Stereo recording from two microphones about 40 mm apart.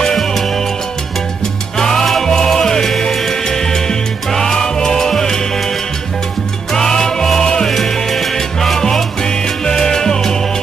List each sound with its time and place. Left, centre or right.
0.0 s music: centre
1.8 s music: centre
6.7 s music: centre
7.2 s salsa music: centre